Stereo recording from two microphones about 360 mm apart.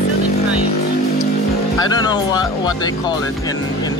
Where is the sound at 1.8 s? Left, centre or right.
Centre.